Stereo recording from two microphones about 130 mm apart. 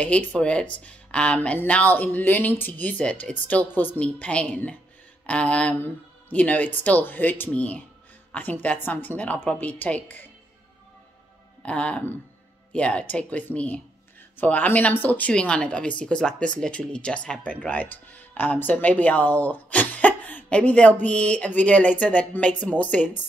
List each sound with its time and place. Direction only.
0.0 s a woman's voice: 10° left (ahead or behind)
11.6 s speech: 10° left (ahead or behind)